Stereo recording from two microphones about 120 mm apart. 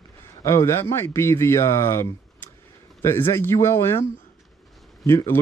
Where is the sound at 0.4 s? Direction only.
25° left (ahead or behind).